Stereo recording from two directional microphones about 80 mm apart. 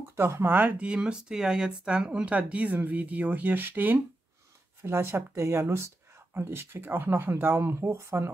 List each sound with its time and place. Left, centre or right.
0.1 s speech: right